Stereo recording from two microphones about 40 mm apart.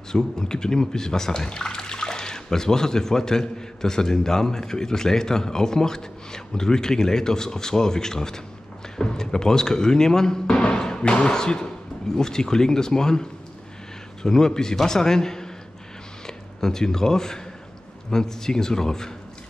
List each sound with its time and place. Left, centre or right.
0.1 s speech: centre